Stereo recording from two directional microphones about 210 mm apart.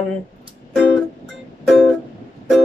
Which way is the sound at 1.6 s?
Centre (ahead or behind).